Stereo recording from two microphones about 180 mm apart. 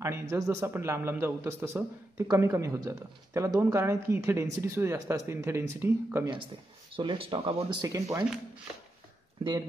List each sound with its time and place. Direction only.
0.0 s a man's voice: 15° right (ahead or behind)
7.0 s speech: 30° right (ahead or behind)
7.8 s speech: 20° right (ahead or behind)